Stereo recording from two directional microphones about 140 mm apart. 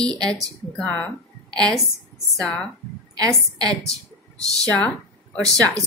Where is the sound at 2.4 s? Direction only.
5° left (ahead or behind).